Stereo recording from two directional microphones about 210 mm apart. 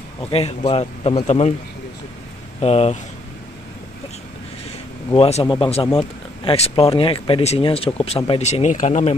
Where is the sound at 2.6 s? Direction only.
30° left (ahead or behind).